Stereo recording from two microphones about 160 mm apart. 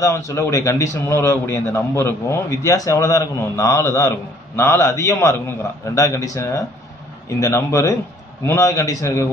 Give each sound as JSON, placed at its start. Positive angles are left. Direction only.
{"t": 0.0, "sound": "a man's voice", "side_deg": 20}